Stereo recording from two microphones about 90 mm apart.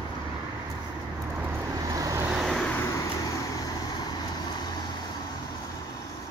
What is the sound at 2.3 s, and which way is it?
Vehicle, 5° left (ahead or behind).